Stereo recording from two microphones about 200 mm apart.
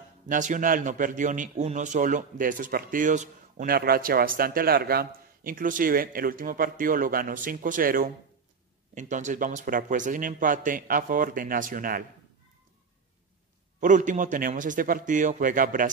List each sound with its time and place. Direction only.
0.3 s a man's voice: 40° right (ahead or behind)
13.7 s speech: 40° right (ahead or behind)